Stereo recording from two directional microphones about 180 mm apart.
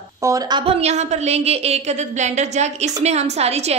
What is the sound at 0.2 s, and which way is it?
A woman's voice, 20° right (ahead or behind).